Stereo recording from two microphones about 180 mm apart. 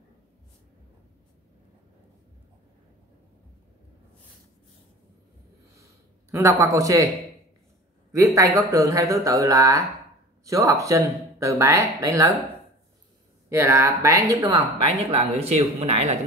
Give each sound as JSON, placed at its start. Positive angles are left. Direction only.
{"t": 6.3, "sound": "speech", "side_deg": -15}
{"t": 8.4, "sound": "speech", "side_deg": -20}
{"t": 13.5, "sound": "speech", "side_deg": -15}
{"t": 14.8, "sound": "speech", "side_deg": -35}